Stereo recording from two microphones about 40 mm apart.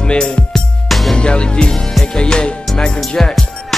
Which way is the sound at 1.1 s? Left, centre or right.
Left.